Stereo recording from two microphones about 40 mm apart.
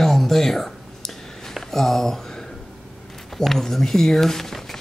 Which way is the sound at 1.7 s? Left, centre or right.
Centre.